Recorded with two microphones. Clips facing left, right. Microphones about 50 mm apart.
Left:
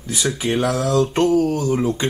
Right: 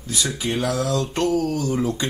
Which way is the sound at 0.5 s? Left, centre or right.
Left.